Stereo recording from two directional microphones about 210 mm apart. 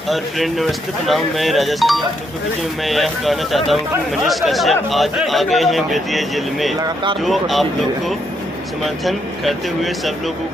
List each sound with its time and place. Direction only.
0.1 s a man's voice: centre (ahead or behind)
6.8 s speech: 20° right (ahead or behind)
7.2 s a man's voice: centre (ahead or behind)
8.8 s a man's voice: centre (ahead or behind)